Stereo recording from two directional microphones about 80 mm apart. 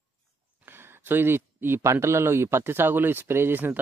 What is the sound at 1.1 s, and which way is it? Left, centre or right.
Speech, right.